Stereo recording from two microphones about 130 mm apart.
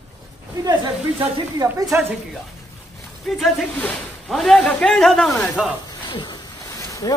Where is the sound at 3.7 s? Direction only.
10° left (ahead or behind); by 5.7 s 5° right (ahead or behind).